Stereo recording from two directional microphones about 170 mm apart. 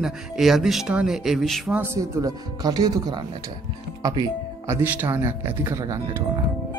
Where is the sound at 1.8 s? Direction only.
15° right (ahead or behind).